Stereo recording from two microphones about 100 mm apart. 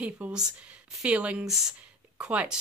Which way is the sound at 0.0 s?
10° right (ahead or behind).